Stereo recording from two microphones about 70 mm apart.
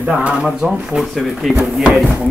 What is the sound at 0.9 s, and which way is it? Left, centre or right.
Speech, centre.